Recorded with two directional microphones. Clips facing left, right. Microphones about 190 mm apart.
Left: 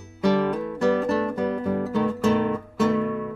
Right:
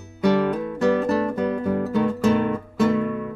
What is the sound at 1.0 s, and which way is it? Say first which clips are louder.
Guitar: right 2 dB; 15° right (ahead or behind).